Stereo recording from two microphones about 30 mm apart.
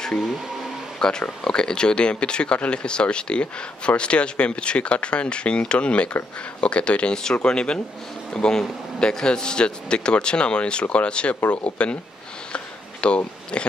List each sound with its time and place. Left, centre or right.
0.9 s speech: left
11.4 s speech: left
12.5 s a sound: left